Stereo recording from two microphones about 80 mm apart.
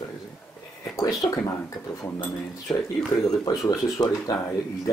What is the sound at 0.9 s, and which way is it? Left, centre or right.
Speech, left.